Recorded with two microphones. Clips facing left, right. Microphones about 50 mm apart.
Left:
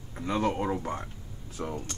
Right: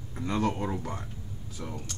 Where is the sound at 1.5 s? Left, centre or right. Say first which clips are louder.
Left 5 dB; left.